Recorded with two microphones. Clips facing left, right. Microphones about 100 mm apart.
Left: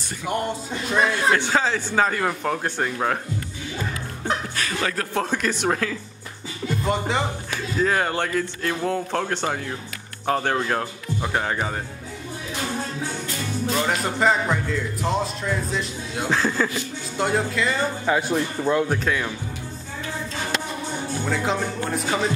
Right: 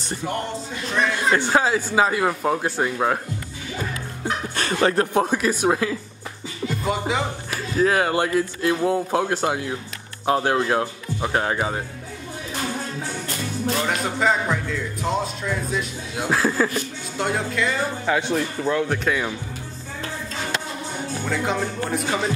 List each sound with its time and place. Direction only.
1.3 s speech: 10° right (ahead or behind)
4.6 s speech: 30° right (ahead or behind)
5.1 s speech: 10° right (ahead or behind)
13.7 s music: centre (ahead or behind)
21.3 s music: centre (ahead or behind)